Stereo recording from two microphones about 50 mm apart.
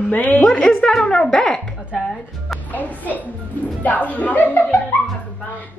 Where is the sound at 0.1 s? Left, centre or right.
Left.